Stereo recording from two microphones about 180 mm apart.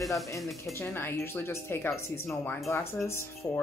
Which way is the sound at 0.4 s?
Centre (ahead or behind).